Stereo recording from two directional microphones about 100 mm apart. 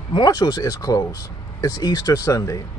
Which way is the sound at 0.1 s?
45° left (ahead or behind).